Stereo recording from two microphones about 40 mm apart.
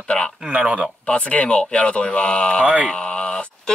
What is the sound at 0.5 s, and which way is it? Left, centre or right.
Speech, right.